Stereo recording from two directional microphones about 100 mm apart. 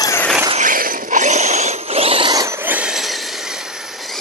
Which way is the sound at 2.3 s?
40° right (ahead or behind).